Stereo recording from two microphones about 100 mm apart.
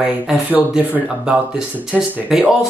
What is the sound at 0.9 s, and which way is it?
Speech, 15° right (ahead or behind).